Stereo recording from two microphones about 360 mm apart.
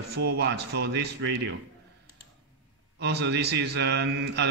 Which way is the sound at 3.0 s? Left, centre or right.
Right.